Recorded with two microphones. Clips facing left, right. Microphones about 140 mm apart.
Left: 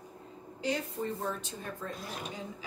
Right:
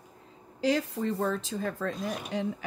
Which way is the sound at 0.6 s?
90° right.